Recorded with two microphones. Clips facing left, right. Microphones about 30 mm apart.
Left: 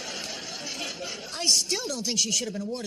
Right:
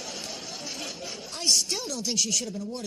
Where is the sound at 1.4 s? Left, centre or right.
Centre.